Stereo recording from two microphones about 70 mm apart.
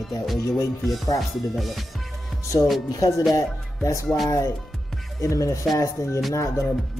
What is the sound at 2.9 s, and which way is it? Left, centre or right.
Speech, left.